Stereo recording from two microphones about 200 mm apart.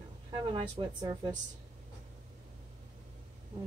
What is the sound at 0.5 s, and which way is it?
Speech, 25° right (ahead or behind).